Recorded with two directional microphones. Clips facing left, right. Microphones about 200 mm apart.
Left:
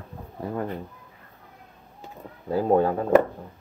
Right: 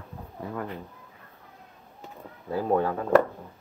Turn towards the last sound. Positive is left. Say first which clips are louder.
# left 4 dB
turn(degrees=30)  # may be behind; listen again after turning